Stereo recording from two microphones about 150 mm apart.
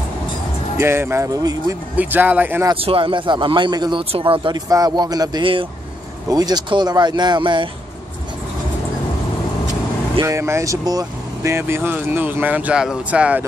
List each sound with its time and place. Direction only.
0.7 s speech: 15° right (ahead or behind)
2.0 s speech: 10° right (ahead or behind)
2.8 s a man's voice: 40° right (ahead or behind)
10.2 s speech: 20° right (ahead or behind)